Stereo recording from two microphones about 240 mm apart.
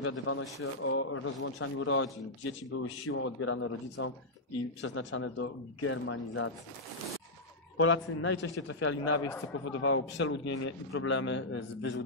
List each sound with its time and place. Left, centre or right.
0.0 s a man's voice: left
7.7 s a man's voice: left
10.5 s a man's voice: left